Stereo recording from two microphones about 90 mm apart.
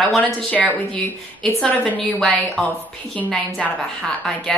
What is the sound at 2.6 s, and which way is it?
Speech, 5° left (ahead or behind).